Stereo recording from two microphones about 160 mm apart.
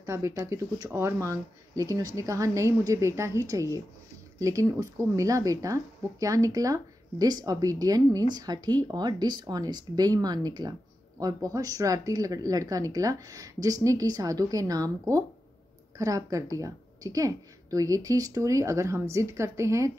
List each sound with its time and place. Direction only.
0.0 s speech: 15° right (ahead or behind)